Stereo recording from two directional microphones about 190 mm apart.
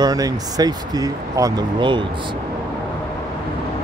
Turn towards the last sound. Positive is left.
turn(degrees=-25)  # may be behind; listen again after turning